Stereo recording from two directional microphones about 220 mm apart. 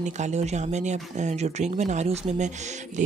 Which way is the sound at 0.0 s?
30° right (ahead or behind).